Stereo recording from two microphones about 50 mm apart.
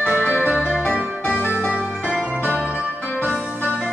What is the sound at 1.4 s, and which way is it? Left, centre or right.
Music, left.